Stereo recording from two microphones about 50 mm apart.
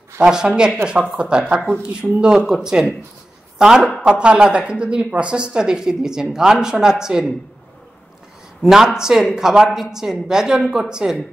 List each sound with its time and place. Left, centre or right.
0.2 s a woman's voice: centre
8.6 s speech: centre